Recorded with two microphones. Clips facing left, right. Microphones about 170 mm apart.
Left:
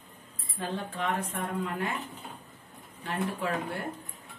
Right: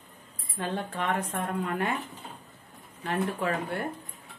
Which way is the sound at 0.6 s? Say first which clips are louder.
Right 2 dB; 65° right (ahead or behind).